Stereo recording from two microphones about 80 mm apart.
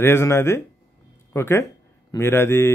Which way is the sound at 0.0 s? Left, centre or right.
Left.